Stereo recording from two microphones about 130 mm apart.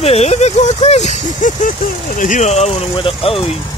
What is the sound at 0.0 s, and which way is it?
Speech, 55° left (ahead or behind).